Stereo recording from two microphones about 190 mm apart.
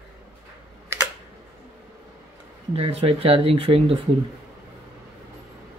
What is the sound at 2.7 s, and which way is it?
Speech, 30° right (ahead or behind).